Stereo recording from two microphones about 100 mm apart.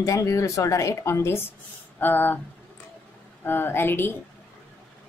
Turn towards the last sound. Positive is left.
turn(degrees=20)  # may be behind; listen again after turning